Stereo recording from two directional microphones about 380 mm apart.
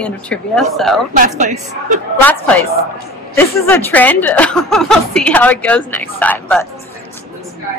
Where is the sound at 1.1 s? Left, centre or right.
Centre.